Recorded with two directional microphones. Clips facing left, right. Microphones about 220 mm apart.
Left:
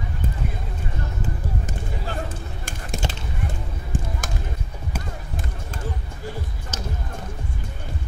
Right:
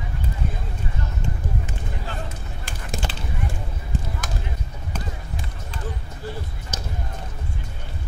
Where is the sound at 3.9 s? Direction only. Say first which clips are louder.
Left 1 dB; 50° left (ahead or behind).